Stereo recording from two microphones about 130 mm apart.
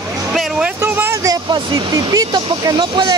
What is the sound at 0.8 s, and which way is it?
Speech, 20° right (ahead or behind).